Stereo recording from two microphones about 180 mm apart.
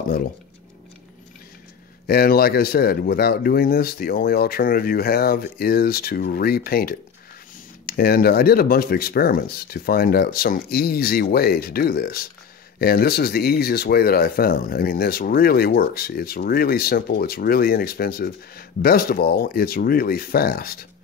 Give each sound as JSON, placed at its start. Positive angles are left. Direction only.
{"t": 2.0, "sound": "speech", "side_deg": 55}